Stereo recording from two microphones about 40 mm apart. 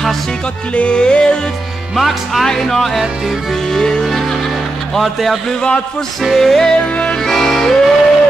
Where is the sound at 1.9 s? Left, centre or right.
Centre.